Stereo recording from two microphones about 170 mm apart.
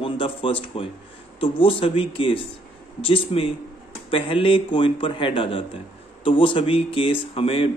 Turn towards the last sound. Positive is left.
turn(degrees=35)  # may be behind; listen again after turning